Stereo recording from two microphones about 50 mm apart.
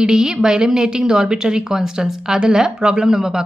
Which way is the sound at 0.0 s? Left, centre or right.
Centre.